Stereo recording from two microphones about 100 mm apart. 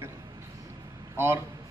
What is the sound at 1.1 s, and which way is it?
Speech, 25° right (ahead or behind).